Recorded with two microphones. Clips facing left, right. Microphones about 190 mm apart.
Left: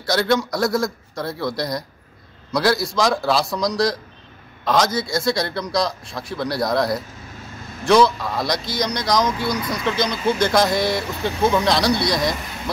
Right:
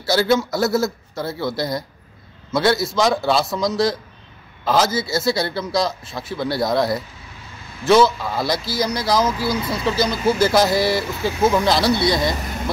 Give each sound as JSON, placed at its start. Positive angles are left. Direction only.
{"t": 0.0, "sound": "speech", "side_deg": -5}
{"t": 9.6, "sound": "speech", "side_deg": -25}
{"t": 9.8, "sound": "speech", "side_deg": -5}